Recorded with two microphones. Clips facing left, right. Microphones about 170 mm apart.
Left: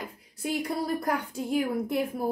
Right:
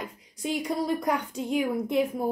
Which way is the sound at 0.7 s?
Centre (ahead or behind).